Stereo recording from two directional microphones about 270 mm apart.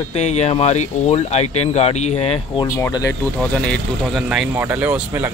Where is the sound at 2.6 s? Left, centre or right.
Centre.